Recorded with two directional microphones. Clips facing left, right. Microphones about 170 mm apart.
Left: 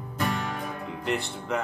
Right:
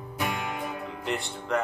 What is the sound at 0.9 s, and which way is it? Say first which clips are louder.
Music: left 2 dB; centre (ahead or behind).